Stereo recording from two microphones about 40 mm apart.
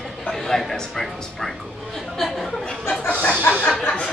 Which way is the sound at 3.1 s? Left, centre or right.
Left.